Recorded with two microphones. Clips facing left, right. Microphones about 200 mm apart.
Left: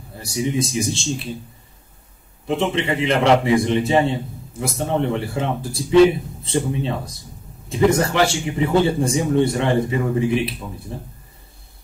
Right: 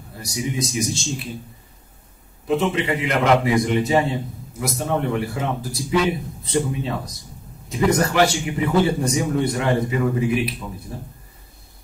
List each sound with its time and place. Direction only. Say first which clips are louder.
0.2 s a man's voice: left 4 dB; 30° left (ahead or behind)
2.4 s a man's voice: even; 30° left (ahead or behind)